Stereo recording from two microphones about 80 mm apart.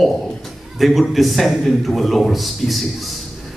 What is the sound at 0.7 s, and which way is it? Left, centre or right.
A man's voice, centre.